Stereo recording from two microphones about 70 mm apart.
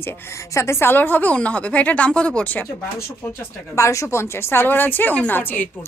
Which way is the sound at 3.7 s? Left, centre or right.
Left.